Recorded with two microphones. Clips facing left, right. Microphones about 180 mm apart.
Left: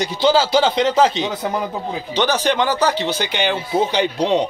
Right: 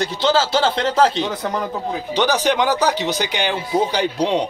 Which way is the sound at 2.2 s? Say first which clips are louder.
Even; 10° right (ahead or behind).